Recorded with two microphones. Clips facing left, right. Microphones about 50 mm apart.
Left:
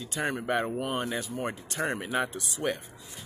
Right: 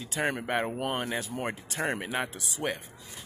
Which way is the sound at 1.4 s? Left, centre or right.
Centre.